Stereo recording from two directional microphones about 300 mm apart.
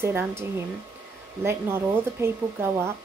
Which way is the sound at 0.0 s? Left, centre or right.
Centre.